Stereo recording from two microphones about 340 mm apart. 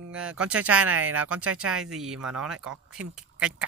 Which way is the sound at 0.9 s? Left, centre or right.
Right.